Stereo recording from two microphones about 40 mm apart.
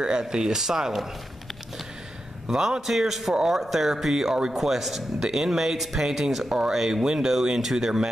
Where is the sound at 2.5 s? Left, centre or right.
Centre.